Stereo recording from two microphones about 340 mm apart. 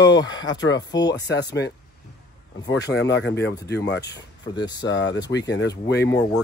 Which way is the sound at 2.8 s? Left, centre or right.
Left.